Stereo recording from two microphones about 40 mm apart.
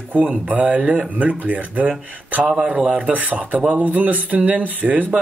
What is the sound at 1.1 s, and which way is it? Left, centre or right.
Speech, right.